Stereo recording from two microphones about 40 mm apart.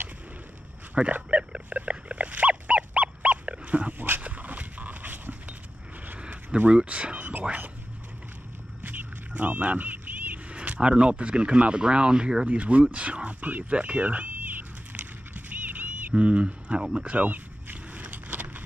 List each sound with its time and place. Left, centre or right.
1.0 s speech: right
1.3 s dog: right
6.7 s speech: right
8.8 s a sound: right
10.5 s speech: right
12.4 s speech: right
13.7 s cat: right
17.0 s speech: right
17.9 s vehicle: right